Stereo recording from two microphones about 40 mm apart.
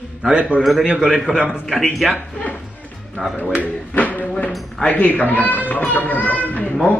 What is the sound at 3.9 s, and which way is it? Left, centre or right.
A child's voice, left.